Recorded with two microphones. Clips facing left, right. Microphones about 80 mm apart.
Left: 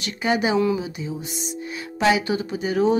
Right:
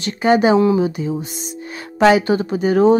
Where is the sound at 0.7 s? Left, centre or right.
Right.